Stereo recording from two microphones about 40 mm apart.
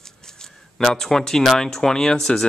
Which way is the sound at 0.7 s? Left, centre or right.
Centre.